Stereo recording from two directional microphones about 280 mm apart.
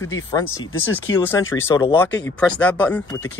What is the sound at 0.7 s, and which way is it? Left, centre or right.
Speech, left.